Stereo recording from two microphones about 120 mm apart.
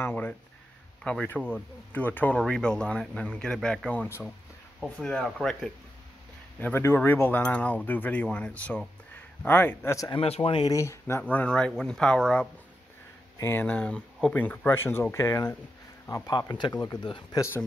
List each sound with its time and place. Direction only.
0.0 s speech: 15° left (ahead or behind)
4.7 s speech: centre (ahead or behind)
6.6 s speech: 20° left (ahead or behind)
10.1 s speech: 55° left (ahead or behind)
10.5 s speech: 30° left (ahead or behind); by 12.4 s 5° left (ahead or behind)
13.4 s speech: 15° left (ahead or behind); by 17.4 s 35° left (ahead or behind)